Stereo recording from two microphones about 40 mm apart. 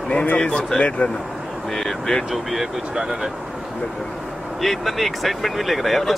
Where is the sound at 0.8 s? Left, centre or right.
Left.